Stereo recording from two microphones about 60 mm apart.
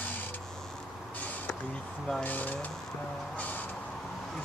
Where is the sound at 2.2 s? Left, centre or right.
Left.